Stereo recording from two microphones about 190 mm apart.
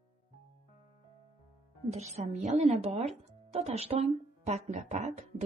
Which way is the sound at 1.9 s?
35° right (ahead or behind).